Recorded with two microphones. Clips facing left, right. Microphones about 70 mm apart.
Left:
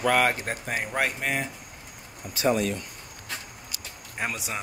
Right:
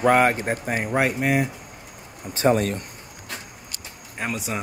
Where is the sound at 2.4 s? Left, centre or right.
Right.